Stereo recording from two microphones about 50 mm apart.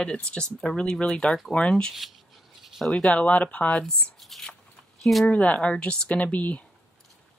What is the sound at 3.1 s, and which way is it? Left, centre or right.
Speech, left.